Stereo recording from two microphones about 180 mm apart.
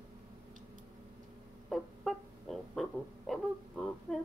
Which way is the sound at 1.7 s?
Centre (ahead or behind).